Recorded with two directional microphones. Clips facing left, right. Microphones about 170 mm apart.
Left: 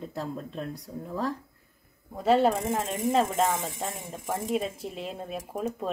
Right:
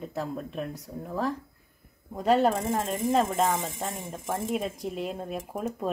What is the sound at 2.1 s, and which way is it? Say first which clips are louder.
A woman's voice: even; 5° left (ahead or behind).